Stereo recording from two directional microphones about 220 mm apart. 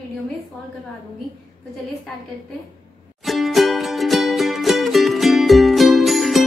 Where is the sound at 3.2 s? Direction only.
Centre (ahead or behind).